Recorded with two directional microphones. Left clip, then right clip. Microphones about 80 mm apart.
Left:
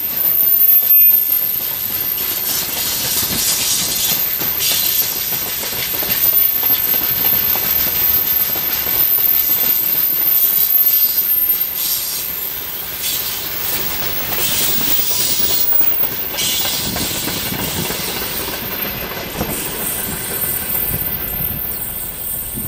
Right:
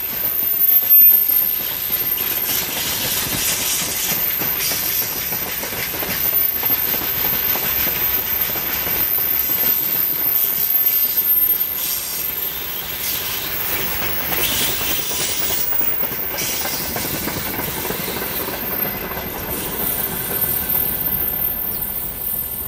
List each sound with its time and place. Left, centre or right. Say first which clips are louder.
2.4 s train: left 1 dB; centre
13.7 s train: left 1 dB; left
16.5 s vehicle: left 4 dB; left